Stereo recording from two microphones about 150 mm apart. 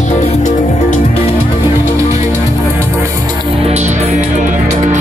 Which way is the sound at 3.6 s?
50° right (ahead or behind).